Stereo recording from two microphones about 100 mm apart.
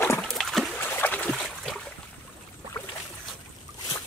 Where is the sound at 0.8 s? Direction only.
20° left (ahead or behind).